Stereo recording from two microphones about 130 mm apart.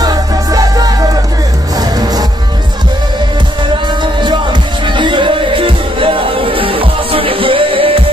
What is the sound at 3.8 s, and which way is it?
Music, 35° right (ahead or behind).